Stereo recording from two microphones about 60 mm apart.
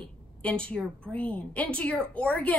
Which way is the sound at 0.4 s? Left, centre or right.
Left.